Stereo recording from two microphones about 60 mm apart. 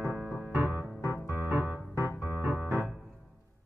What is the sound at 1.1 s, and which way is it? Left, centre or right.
Piano, right.